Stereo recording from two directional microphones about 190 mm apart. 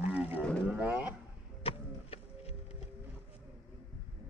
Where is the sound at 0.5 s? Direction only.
5° right (ahead or behind).